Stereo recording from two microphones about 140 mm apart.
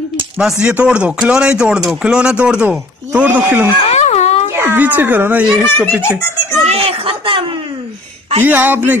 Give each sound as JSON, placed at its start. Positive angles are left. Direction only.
{"t": 0.4, "sound": "speech", "side_deg": -5}
{"t": 3.8, "sound": "wail", "side_deg": 50}
{"t": 4.5, "sound": "speech", "side_deg": -15}
{"t": 6.0, "sound": "a child's voice", "side_deg": 20}
{"t": 6.6, "sound": "a sound", "side_deg": -45}
{"t": 8.4, "sound": "speech", "side_deg": -15}